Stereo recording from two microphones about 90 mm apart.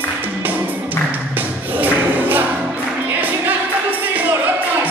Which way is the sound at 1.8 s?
20° right (ahead or behind).